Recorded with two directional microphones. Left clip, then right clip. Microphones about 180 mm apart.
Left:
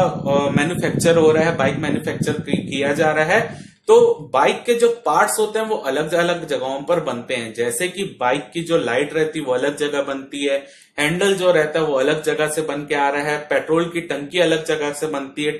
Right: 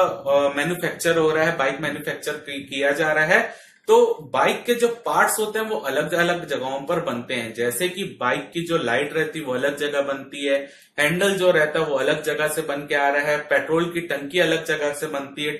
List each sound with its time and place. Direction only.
0.3 s speech: 25° left (ahead or behind)